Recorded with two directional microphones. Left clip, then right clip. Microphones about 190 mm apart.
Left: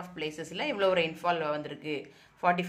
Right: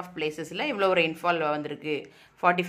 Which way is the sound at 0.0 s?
25° right (ahead or behind).